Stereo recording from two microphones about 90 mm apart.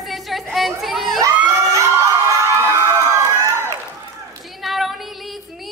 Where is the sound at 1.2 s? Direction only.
35° right (ahead or behind).